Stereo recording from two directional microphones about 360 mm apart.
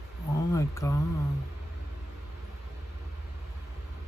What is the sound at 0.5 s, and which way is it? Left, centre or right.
Speech, centre.